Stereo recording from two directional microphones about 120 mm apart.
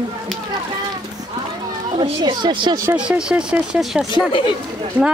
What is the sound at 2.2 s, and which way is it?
Speech, 40° right (ahead or behind).